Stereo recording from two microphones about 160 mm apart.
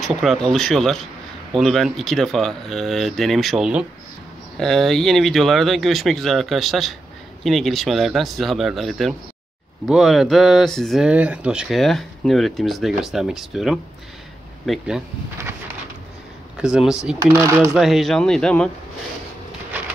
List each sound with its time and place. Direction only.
0.0 s speech: centre (ahead or behind)
16.5 s speech: 5° right (ahead or behind)
17.2 s speech: 20° right (ahead or behind)
17.7 s speech: centre (ahead or behind)